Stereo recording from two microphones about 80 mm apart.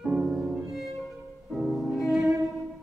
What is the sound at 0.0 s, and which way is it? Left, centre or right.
Music, centre.